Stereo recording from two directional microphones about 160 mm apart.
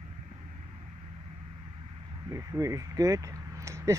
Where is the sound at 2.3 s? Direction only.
20° right (ahead or behind).